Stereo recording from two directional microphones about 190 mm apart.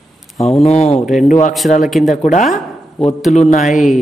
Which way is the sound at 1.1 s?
Centre (ahead or behind).